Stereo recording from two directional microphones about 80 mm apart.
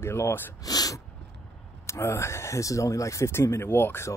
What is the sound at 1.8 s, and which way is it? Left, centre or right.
Speech, left.